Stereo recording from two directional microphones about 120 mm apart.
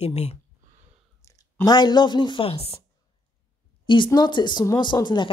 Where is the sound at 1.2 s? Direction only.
25° left (ahead or behind); by 2.7 s 55° left (ahead or behind).